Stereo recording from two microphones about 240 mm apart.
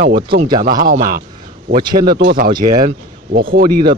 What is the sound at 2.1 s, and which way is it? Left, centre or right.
Speech, right.